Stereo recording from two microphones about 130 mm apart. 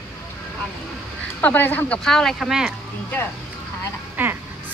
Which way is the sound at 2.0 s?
5° left (ahead or behind).